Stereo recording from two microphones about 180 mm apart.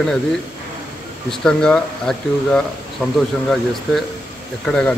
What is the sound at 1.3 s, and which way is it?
Speech, 5° left (ahead or behind).